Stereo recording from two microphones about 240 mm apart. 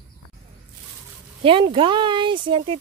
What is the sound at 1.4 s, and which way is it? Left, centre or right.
Speech, right.